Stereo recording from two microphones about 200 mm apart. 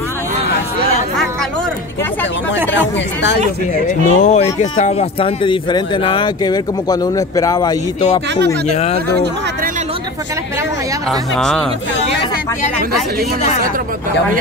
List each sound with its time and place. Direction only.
4.0 s speech: 35° left (ahead or behind); by 7.7 s 20° left (ahead or behind)
8.6 s speech: 30° left (ahead or behind)
11.1 s speech: centre (ahead or behind)